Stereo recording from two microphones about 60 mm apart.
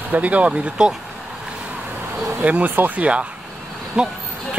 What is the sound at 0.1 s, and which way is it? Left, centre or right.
Speech, right.